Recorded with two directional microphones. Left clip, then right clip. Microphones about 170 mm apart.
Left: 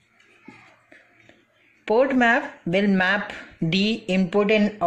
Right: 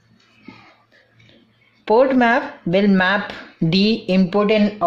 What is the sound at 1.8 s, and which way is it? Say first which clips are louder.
Speech: right 4 dB; 15° left (ahead or behind).